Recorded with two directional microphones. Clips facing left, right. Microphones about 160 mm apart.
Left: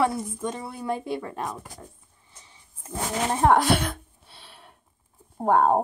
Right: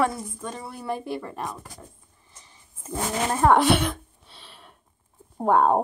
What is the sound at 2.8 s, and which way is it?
Speech, 5° left (ahead or behind).